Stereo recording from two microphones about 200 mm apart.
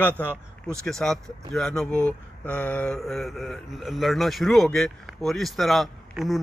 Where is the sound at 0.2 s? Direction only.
5° left (ahead or behind).